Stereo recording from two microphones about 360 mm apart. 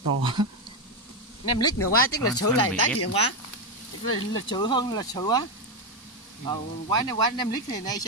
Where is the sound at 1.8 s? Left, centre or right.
Left.